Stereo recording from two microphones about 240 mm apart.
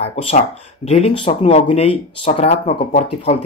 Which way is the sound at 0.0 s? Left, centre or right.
Left.